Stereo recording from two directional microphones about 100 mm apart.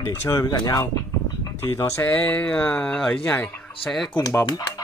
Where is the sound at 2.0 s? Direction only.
15° left (ahead or behind).